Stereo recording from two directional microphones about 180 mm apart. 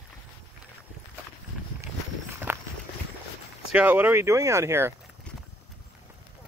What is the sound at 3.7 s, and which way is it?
Speech, 10° right (ahead or behind).